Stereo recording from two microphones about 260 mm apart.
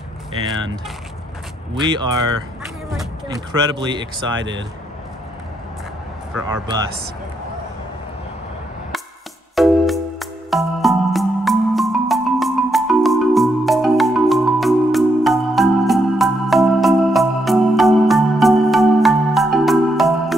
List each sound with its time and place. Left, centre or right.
1.8 s speech: centre
3.5 s speech: centre
4.3 s speech: right
9.6 s music: centre